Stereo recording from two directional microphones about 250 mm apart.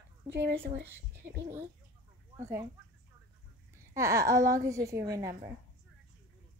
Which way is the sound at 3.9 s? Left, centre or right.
Centre.